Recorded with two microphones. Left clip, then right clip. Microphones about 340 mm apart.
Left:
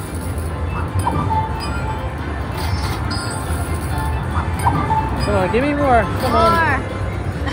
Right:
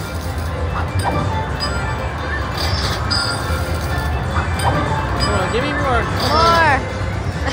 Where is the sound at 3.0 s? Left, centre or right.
Centre.